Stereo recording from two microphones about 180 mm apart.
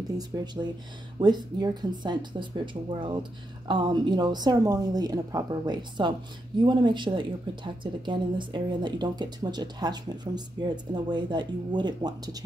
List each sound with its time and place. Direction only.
0.3 s speech: 20° right (ahead or behind)